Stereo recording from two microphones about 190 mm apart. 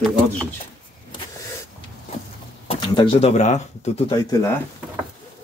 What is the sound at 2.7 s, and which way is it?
Speech, 25° left (ahead or behind).